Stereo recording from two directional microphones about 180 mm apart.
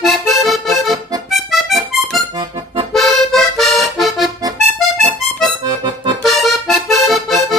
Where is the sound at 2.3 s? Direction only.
30° right (ahead or behind).